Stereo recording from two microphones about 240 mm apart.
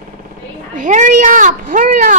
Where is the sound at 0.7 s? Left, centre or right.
Right.